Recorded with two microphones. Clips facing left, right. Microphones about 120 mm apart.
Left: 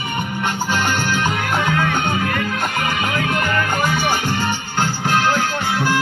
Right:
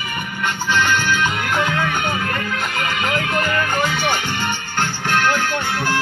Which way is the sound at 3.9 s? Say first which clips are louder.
Left 2 dB; 40° left (ahead or behind).